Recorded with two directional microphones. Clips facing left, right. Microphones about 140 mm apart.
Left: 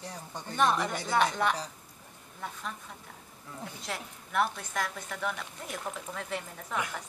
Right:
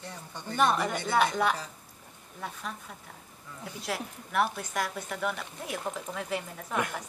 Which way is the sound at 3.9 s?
5° right (ahead or behind).